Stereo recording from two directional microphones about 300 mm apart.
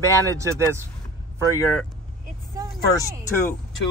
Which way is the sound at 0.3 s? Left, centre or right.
Centre.